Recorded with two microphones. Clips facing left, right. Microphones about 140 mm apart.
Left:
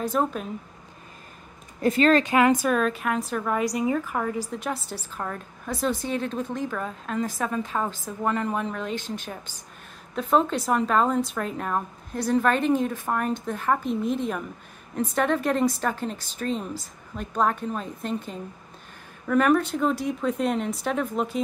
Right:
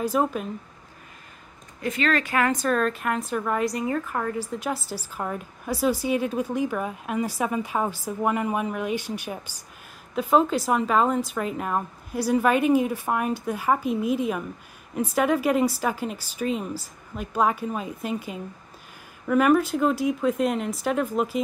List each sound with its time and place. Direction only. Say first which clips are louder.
0.0 s speech: right 1 dB; 5° right (ahead or behind)
1.8 s speech: left 5 dB; 35° left (ahead or behind)
2.2 s a woman's voice: left 3 dB; 20° left (ahead or behind); by 21.4 s 5° right (ahead or behind)